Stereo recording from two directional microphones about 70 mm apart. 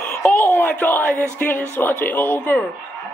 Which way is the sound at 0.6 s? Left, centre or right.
Left.